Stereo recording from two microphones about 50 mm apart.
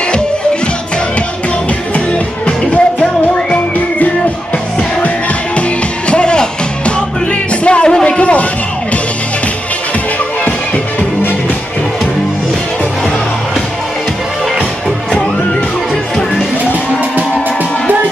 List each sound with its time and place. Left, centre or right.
2.4 s music: left
6.0 s music: centre
7.6 s music: centre
8.2 s a sound: left